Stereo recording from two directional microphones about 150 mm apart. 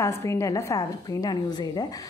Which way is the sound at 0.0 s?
20° left (ahead or behind).